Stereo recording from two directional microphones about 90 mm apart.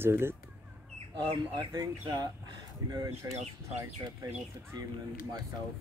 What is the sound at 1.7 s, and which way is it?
Speech, 45° right (ahead or behind).